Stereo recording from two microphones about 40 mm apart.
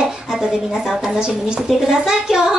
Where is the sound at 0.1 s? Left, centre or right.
Centre.